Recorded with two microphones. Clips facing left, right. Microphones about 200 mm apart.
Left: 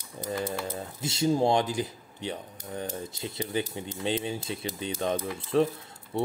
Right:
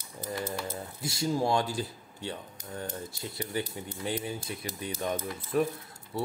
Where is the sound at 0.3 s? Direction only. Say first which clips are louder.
Left 3 dB; 20° left (ahead or behind).